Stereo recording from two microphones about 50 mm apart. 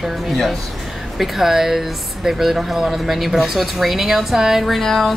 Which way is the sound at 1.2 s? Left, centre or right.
Centre.